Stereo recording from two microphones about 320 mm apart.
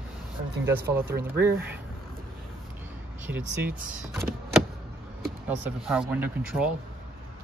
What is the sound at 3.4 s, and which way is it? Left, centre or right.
Speech, right.